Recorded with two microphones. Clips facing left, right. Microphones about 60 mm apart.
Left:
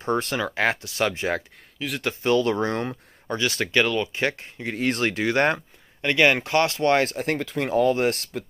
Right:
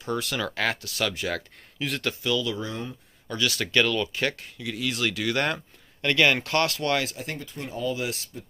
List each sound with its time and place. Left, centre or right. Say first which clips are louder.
0.0 s speech: left 5 dB; left
0.4 s speech: left 4 dB; left
1.8 s speech: even; centre
2.2 s speech: left 9 dB; left
3.3 s speech: left 3 dB; left
7.1 s speech: left 9 dB; left
7.3 s speech: left 12 dB; left